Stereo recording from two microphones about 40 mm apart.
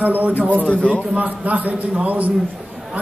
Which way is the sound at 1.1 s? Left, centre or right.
Right.